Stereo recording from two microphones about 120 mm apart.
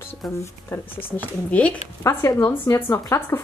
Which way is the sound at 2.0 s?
25° left (ahead or behind).